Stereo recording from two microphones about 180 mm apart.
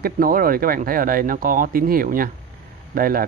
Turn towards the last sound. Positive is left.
turn(degrees=-55)  # may be behind; listen again after turning